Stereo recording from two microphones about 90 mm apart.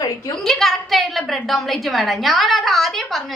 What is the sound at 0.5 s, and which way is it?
A woman's voice, 5° left (ahead or behind).